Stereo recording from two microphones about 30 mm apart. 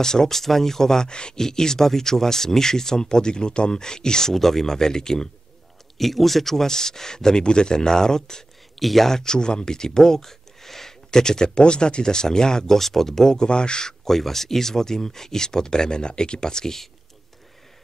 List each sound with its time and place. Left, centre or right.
0.0 s speech: centre
1.0 s speech: left
4.4 s speech: centre
5.9 s speech: centre; by 8.5 s left
8.7 s speech: centre
9.1 s speech: left
11.1 s speech: left
12.7 s speech: centre; by 13.9 s left
14.0 s speech: centre